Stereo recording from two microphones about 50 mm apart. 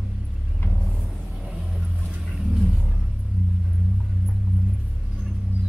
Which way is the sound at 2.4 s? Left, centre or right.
Centre.